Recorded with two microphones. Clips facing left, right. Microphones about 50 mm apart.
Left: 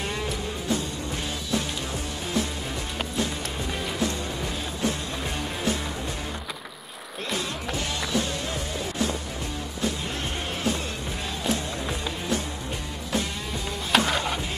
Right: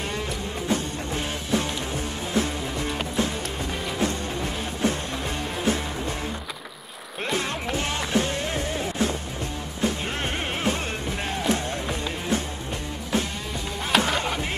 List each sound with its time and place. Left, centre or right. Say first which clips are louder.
8.0 s music: right 3 dB; right
13.9 s music: even; centre